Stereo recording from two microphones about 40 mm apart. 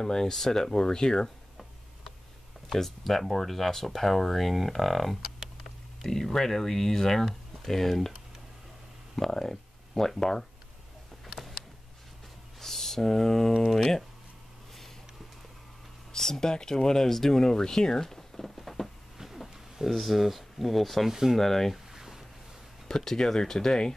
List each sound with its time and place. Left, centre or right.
0.0 s speech: centre
2.7 s speech: centre
9.1 s speech: centre
11.3 s a sound: centre
16.1 s speech: centre
19.1 s a sound: centre
21.1 s speech: centre
21.4 s speech: centre
21.7 s a sound: centre
22.8 s speech: centre